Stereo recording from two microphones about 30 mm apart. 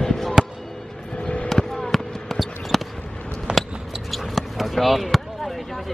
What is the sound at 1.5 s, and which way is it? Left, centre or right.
Fireworks, centre.